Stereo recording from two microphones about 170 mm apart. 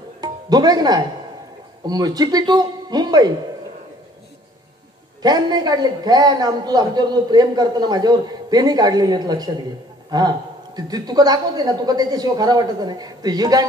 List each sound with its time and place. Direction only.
0.2 s music: 25° right (ahead or behind)
1.9 s a woman's voice: 25° right (ahead or behind)
5.2 s a woman's voice: 25° right (ahead or behind)